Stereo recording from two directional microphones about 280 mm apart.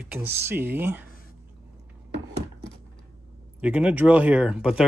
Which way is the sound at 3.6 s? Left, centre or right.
Centre.